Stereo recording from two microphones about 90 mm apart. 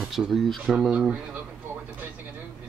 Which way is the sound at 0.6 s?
10° right (ahead or behind).